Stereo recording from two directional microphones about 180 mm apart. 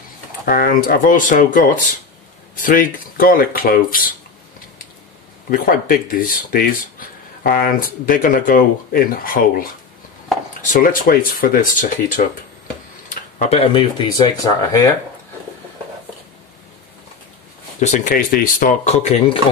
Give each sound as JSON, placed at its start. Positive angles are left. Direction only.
{"t": 0.5, "sound": "speech", "side_deg": 55}
{"t": 5.5, "sound": "speech", "side_deg": 50}
{"t": 10.7, "sound": "speech", "side_deg": 50}
{"t": 13.1, "sound": "speech", "side_deg": 35}
{"t": 17.7, "sound": "speech", "side_deg": 40}